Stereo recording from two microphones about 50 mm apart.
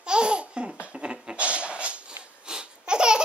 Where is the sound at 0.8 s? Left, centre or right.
Right.